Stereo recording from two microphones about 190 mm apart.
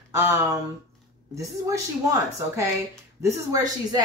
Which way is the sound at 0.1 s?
15° right (ahead or behind).